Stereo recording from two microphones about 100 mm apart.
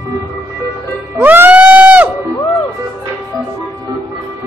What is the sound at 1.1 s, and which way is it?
Music, 20° right (ahead or behind).